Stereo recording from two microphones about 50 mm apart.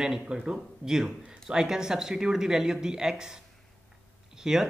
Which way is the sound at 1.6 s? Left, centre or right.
Centre.